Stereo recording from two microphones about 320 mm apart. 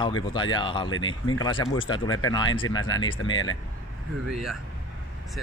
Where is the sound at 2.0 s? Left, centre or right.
Left.